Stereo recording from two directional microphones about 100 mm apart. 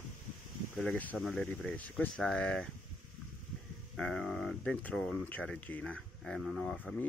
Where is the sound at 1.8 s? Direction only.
15° left (ahead or behind).